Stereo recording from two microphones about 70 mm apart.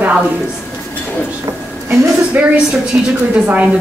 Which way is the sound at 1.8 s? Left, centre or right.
Right.